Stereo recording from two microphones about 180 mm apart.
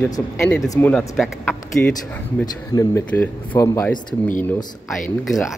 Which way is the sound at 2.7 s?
20° left (ahead or behind).